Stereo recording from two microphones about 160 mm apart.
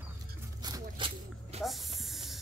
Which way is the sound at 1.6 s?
Centre (ahead or behind).